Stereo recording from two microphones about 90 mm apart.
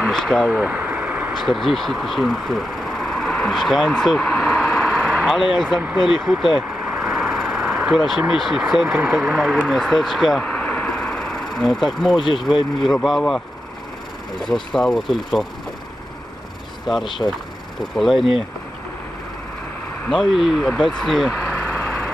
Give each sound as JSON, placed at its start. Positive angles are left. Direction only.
{"t": 0.0, "sound": "speech", "side_deg": 0}
{"t": 0.5, "sound": "vehicle", "side_deg": -15}
{"t": 1.3, "sound": "speech", "side_deg": 0}
{"t": 6.8, "sound": "vehicle", "side_deg": -20}
{"t": 7.1, "sound": "vehicle", "side_deg": -5}
{"t": 8.2, "sound": "speech", "side_deg": -5}
{"t": 10.5, "sound": "a sound", "side_deg": 15}
{"t": 12.8, "sound": "speech", "side_deg": 0}
{"t": 14.4, "sound": "speech", "side_deg": 5}
{"t": 16.8, "sound": "speech", "side_deg": 0}
{"t": 20.1, "sound": "speech", "side_deg": 0}
{"t": 21.4, "sound": "vehicle", "side_deg": 20}